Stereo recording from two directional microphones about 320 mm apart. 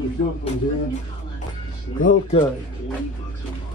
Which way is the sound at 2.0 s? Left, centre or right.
Left.